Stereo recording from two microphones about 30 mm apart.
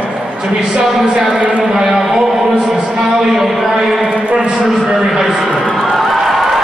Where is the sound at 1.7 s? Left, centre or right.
Centre.